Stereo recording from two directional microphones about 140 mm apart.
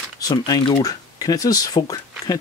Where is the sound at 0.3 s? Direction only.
35° left (ahead or behind).